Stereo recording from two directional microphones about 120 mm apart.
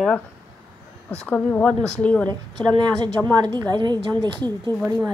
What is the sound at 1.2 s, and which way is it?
Speech, 10° left (ahead or behind).